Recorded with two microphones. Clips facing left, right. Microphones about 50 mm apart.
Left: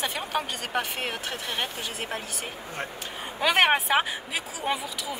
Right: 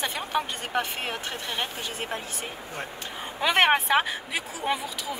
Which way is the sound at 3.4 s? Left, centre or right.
Centre.